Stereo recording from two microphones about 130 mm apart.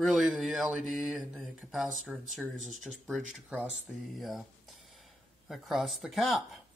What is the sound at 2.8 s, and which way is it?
Speech, centre (ahead or behind).